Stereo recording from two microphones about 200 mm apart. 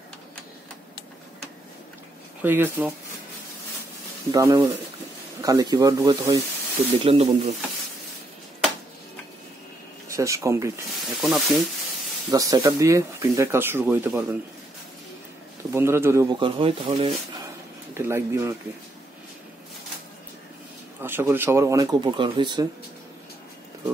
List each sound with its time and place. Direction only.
2.4 s speech: 10° right (ahead or behind)
4.3 s speech: 15° right (ahead or behind)
7.0 s speech: 30° right (ahead or behind)
10.0 s speech: 15° right (ahead or behind)
11.1 s speech: centre (ahead or behind)
12.3 s speech: 15° right (ahead or behind)
15.7 s speech: 10° right (ahead or behind); by 17.1 s 30° right (ahead or behind)
17.9 s speech: 10° right (ahead or behind)
21.0 s speech: 10° right (ahead or behind)